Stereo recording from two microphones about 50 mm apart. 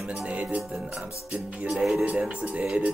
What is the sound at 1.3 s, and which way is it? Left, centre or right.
Music, centre.